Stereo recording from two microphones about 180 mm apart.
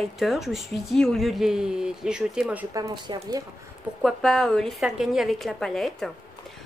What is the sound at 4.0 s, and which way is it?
A woman's voice, centre (ahead or behind).